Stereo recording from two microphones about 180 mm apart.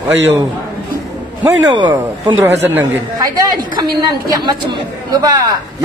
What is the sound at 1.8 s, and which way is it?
Speech, 25° right (ahead or behind).